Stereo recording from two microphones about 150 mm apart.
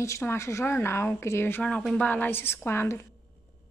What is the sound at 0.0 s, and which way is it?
A woman's voice, 20° left (ahead or behind).